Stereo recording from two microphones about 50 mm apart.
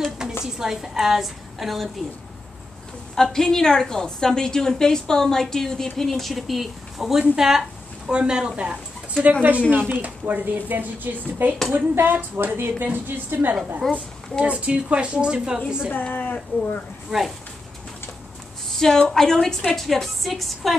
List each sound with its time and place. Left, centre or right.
0.4 s a woman's voice: centre
3.2 s a woman's voice: centre; by 9.3 s right
9.3 s a woman's voice: right
13.8 s a woman's voice: centre
14.4 s a woman's voice: right
15.9 s speech: left
18.8 s a woman's voice: centre